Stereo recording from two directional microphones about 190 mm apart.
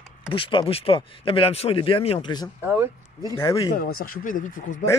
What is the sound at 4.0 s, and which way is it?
Speech, 45° left (ahead or behind).